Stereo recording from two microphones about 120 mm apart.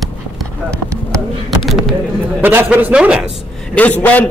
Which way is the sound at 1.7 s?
Centre (ahead or behind).